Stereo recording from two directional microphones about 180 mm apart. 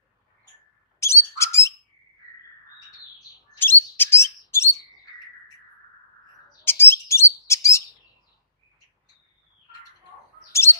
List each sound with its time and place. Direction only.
0.9 s bird: 15° left (ahead or behind)
3.5 s bird: 10° left (ahead or behind)
6.6 s bird: 10° left (ahead or behind)
10.5 s bird: 15° left (ahead or behind)